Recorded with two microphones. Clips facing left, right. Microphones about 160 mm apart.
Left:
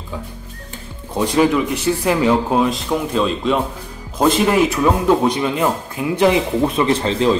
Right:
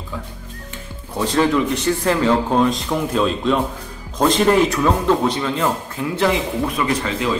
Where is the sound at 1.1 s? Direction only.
15° left (ahead or behind).